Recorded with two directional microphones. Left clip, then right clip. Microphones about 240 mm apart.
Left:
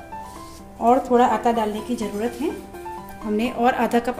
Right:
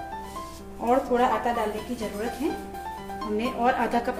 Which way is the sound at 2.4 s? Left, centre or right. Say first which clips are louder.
Left 2 dB; left.